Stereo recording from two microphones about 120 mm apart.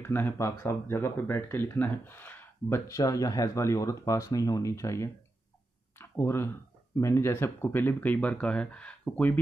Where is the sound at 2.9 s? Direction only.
30° left (ahead or behind).